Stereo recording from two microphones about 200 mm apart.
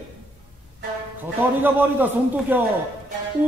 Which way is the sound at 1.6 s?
10° right (ahead or behind).